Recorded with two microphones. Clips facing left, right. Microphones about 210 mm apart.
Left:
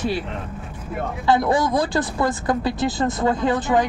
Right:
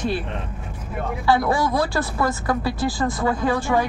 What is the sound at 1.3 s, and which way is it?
Speech, 20° left (ahead or behind).